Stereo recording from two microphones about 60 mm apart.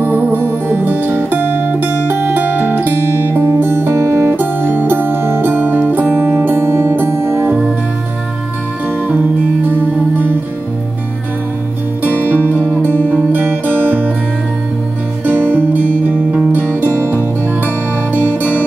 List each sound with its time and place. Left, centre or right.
0.0 s music: right
12.0 s music: right
12.5 s music: left
13.3 s music: right
15.2 s music: right
16.8 s music: right